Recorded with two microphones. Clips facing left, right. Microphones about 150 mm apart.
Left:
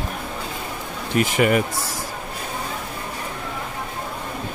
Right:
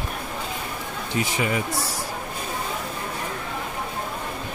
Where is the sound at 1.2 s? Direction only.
65° left (ahead or behind).